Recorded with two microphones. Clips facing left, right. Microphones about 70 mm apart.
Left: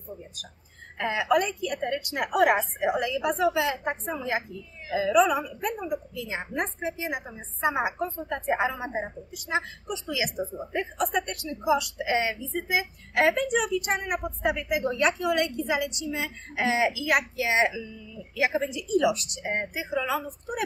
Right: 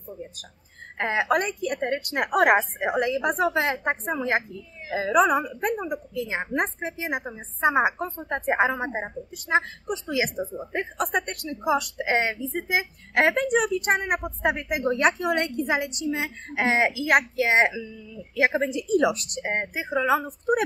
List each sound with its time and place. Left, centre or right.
0.9 s a woman's voice: right